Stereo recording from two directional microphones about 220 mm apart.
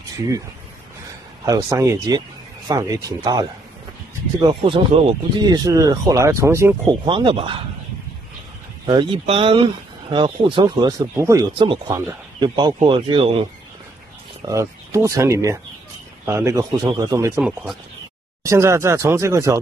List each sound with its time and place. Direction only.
1.4 s speech: 15° right (ahead or behind)
7.1 s speech: 25° right (ahead or behind)
8.8 s speech: 20° right (ahead or behind)
14.4 s speech: 15° right (ahead or behind)
17.4 s speech: 5° right (ahead or behind)